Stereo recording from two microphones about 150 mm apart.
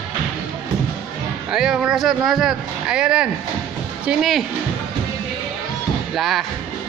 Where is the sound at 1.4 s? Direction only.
5° right (ahead or behind).